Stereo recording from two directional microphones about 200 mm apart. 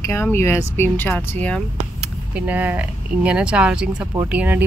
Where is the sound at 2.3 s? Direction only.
10° right (ahead or behind).